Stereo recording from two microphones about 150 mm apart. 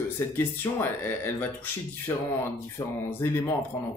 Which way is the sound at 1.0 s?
15° left (ahead or behind).